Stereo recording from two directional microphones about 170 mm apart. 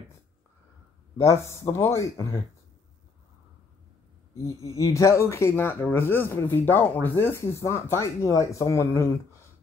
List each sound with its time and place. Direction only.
1.1 s speech: 20° left (ahead or behind)
4.7 s speech: 20° left (ahead or behind)